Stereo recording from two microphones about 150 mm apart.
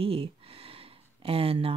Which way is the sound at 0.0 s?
40° right (ahead or behind).